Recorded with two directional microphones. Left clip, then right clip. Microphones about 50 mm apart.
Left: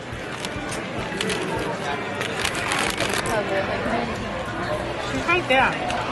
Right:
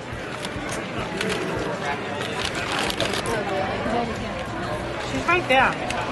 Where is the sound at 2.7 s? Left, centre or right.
Left.